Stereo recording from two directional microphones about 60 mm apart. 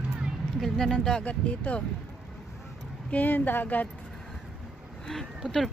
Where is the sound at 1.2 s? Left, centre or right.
Left.